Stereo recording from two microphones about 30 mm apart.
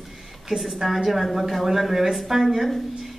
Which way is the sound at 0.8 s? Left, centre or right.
Centre.